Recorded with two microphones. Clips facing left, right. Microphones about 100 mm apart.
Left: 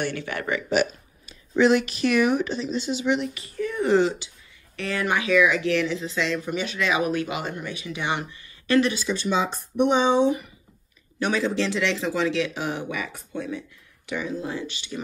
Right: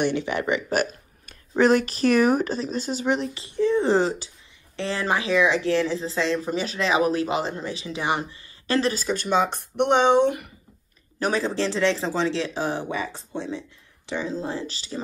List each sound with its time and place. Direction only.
0.0 s speech: 15° right (ahead or behind)
0.7 s speech: 50° right (ahead or behind)
3.4 s speech: 25° right (ahead or behind); by 10.5 s 60° right (ahead or behind)
11.1 s speech: 35° right (ahead or behind)